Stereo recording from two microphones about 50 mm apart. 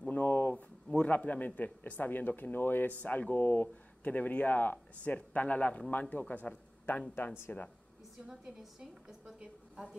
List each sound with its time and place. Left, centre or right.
0.1 s a sound: left
0.8 s a sound: left
1.1 s speech: left
3.0 s speech: left
7.2 s speech: left
8.3 s a woman's voice: centre